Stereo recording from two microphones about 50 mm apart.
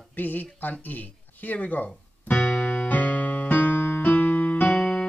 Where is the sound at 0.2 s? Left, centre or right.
Left.